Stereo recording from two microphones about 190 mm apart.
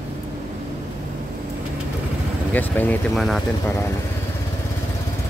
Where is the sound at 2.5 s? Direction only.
10° left (ahead or behind).